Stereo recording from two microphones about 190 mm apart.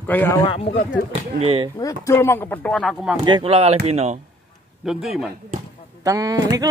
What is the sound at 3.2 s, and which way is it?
Speech, 25° right (ahead or behind).